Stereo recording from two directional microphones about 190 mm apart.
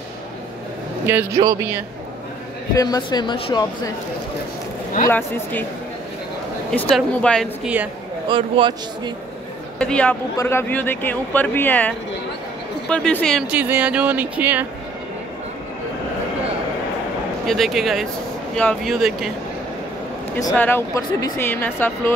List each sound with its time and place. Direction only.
1.0 s a man's voice: 10° right (ahead or behind)
2.7 s speech: 20° left (ahead or behind)
5.0 s speech: 10° left (ahead or behind)
6.7 s speech: 5° left (ahead or behind)
7.6 s speech: 5° right (ahead or behind)
8.3 s a man's voice: 25° right (ahead or behind)
9.8 s speech: 5° left (ahead or behind)
17.5 s speech: centre (ahead or behind)
20.5 s speech: 10° left (ahead or behind)